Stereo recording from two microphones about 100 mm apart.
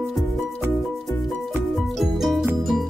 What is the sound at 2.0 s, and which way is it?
Music, centre (ahead or behind).